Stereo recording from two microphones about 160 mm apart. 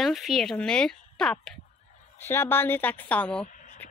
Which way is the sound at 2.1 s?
15° left (ahead or behind).